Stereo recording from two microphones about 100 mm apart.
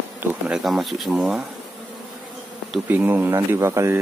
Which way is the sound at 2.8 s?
20° right (ahead or behind).